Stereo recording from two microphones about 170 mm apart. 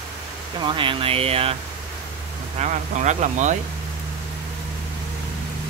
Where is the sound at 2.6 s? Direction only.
45° right (ahead or behind).